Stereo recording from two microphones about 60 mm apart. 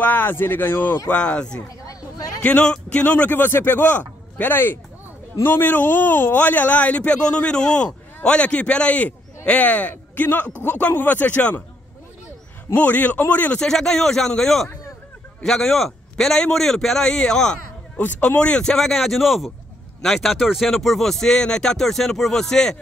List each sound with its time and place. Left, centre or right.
0.0 s a man's voice: left
1.0 s a man's voice: centre
1.9 s a sound: left
2.4 s a man's voice: centre
3.1 s a man's voice: left
12.7 s a man's voice: left
13.6 s a man's voice: centre
17.9 s a man's voice: left